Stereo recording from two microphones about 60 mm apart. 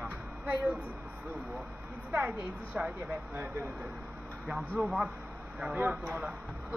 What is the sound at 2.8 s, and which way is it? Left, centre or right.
Speech, right.